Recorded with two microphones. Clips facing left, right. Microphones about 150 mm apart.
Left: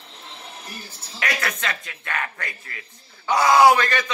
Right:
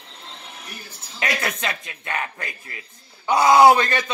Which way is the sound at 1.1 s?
25° right (ahead or behind).